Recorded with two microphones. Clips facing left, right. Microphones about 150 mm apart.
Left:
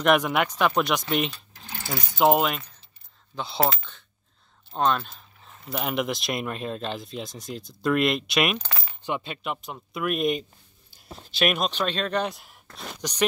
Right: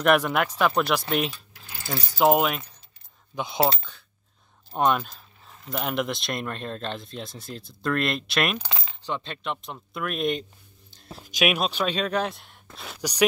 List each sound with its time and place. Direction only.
0.0 s speech: centre (ahead or behind)
3.3 s speech: 15° right (ahead or behind)
4.7 s speech: 15° right (ahead or behind)
5.7 s speech: 5° left (ahead or behind)
8.5 s speech: 20° right (ahead or behind)
9.0 s speech: 10° left (ahead or behind)
11.3 s speech: 10° right (ahead or behind)